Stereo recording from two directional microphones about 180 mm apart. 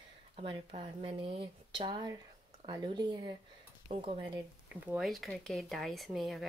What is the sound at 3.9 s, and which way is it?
Cutlery, 30° right (ahead or behind).